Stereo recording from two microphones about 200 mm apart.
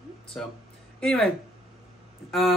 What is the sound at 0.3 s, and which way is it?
Speech, 5° left (ahead or behind).